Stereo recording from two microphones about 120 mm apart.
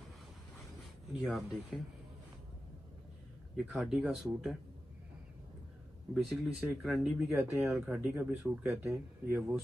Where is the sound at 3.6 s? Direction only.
5° right (ahead or behind).